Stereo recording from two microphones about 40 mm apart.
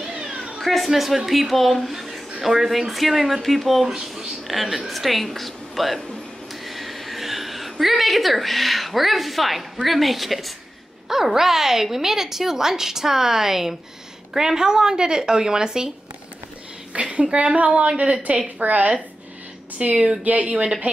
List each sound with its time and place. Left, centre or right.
0.6 s a woman's voice: centre
1.9 s a sound: centre
2.4 s a woman's voice: centre
6.5 s a sound: centre
7.8 s a woman's voice: centre
16.9 s speech: right
19.8 s speech: right